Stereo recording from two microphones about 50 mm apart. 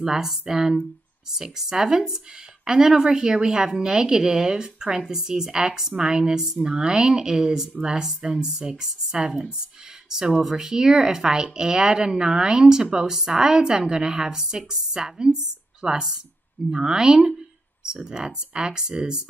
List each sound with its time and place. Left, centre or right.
0.0 s speech: centre
6.4 s a woman's voice: centre
6.7 s speech: centre